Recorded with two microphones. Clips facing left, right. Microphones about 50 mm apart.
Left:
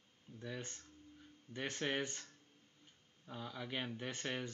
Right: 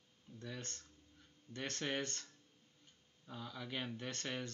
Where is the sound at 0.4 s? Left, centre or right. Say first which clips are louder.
Left 2 dB; centre.